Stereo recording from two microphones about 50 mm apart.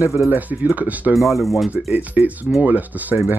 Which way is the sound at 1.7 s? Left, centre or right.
Right.